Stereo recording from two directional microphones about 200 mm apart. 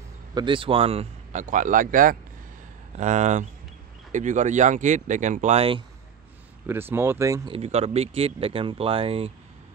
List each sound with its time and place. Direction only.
0.3 s speech: 25° right (ahead or behind)
6.6 s speech: 10° right (ahead or behind)
7.5 s speech: 30° right (ahead or behind)